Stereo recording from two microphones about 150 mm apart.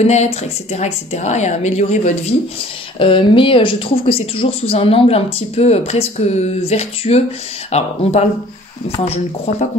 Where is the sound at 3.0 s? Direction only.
35° left (ahead or behind).